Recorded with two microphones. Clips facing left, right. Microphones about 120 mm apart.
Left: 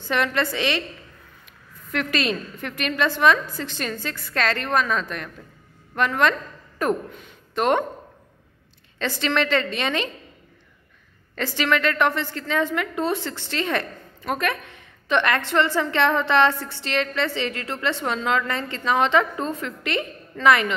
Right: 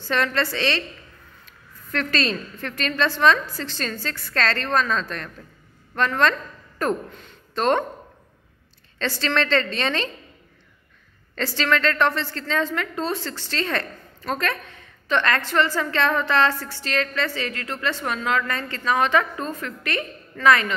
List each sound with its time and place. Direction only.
0.0 s a woman's voice: 15° left (ahead or behind)
8.9 s a woman's voice: 15° left (ahead or behind)
11.3 s a woman's voice: 15° left (ahead or behind)